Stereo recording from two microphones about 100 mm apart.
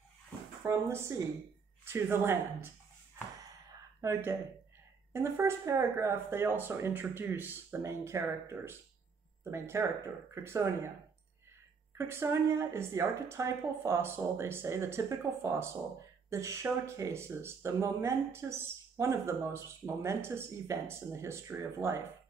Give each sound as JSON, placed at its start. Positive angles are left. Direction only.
{"t": 0.7, "sound": "speech", "side_deg": -30}
{"t": 4.0, "sound": "speech", "side_deg": -25}
{"t": 12.0, "sound": "speech", "side_deg": -25}